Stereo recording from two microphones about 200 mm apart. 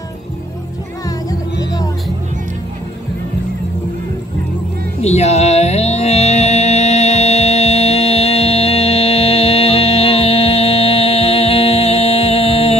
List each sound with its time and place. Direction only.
1.6 s music: 20° left (ahead or behind)
5.0 s music: 35° left (ahead or behind)